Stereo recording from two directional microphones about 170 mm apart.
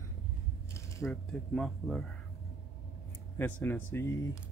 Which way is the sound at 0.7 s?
15° left (ahead or behind).